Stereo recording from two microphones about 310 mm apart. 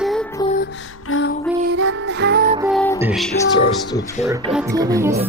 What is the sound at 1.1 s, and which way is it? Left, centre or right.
Female singing, left.